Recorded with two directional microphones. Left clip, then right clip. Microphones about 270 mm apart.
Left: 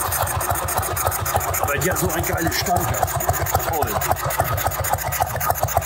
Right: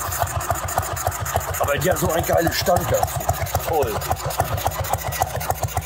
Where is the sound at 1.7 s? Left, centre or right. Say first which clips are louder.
Right 1 dB; right.